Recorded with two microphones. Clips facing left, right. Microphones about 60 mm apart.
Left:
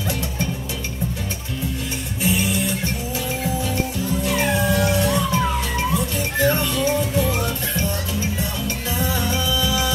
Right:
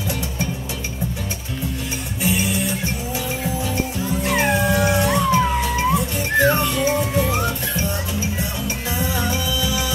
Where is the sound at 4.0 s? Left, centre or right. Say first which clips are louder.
Right 3 dB; right.